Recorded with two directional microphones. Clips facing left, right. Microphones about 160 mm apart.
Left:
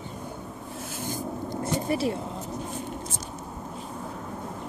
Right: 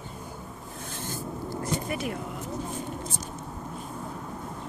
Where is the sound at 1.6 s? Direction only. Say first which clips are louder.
Left 5 dB; 30° left (ahead or behind).